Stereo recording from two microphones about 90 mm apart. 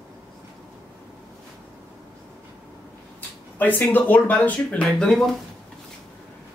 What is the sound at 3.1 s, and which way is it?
Speech, 20° left (ahead or behind).